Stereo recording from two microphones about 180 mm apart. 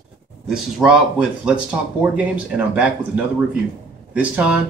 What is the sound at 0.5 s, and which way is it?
Speech, 5° right (ahead or behind).